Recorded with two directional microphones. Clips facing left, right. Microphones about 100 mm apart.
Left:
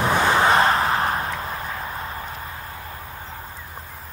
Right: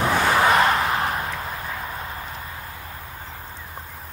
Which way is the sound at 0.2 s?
30° left (ahead or behind).